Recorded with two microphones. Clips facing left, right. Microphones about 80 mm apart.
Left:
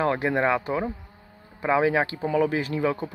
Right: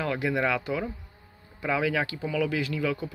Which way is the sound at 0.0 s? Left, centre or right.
Left.